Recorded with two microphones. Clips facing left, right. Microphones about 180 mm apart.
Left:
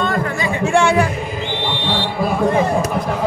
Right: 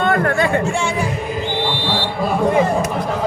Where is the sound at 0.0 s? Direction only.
60° right (ahead or behind).